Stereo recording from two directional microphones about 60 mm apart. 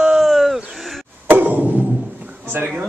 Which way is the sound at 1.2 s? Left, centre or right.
Right.